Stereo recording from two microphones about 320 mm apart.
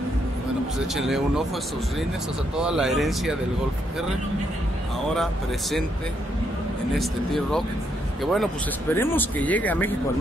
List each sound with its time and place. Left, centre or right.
0.7 s speech: centre
2.5 s speech: centre
5.1 s speech: centre
7.0 s speech: centre